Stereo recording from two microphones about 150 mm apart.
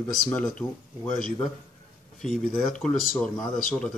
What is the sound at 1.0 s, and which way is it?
Speech, 60° left (ahead or behind).